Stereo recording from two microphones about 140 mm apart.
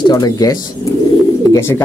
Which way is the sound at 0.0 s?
30° left (ahead or behind).